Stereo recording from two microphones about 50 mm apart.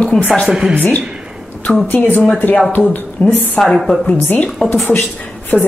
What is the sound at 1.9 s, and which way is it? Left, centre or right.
A woman's voice, left.